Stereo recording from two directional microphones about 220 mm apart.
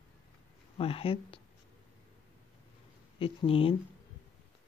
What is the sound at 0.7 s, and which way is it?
Speech, 25° left (ahead or behind).